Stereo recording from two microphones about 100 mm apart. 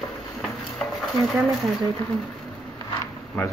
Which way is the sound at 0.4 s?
Centre (ahead or behind).